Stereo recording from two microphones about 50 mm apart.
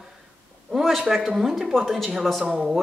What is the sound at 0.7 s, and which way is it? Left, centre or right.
A woman's voice, centre.